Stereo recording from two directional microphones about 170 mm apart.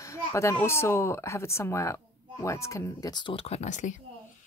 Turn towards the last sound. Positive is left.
turn(degrees=45)  # may be behind; listen again after turning